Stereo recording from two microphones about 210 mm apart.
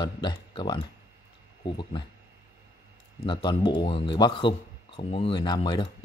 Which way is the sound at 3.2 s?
20° left (ahead or behind).